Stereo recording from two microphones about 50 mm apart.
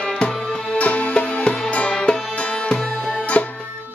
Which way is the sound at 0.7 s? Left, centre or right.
Left.